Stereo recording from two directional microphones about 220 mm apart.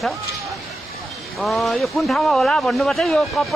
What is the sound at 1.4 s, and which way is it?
Speech, centre (ahead or behind).